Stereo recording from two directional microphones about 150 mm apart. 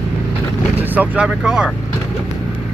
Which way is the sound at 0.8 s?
10° right (ahead or behind).